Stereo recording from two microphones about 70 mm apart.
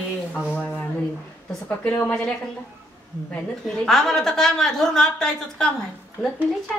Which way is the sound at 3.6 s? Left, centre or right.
Centre.